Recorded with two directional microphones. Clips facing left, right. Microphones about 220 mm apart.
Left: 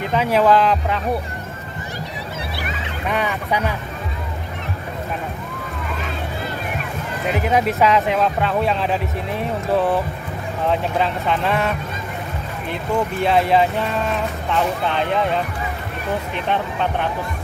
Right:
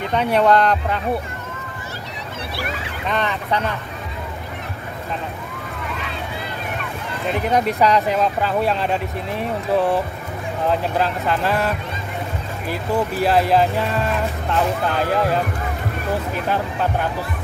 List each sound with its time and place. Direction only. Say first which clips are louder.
0.1 s speech: even; 5° left (ahead or behind)
3.1 s speech: even; 10° left (ahead or behind)
7.2 s speech: even; centre (ahead or behind)